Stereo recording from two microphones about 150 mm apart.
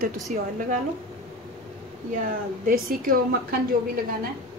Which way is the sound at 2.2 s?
70° right (ahead or behind).